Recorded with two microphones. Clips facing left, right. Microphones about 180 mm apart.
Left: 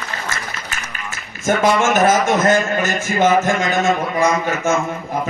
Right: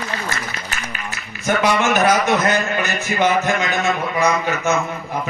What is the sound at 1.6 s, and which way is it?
A man's voice, 45° left (ahead or behind).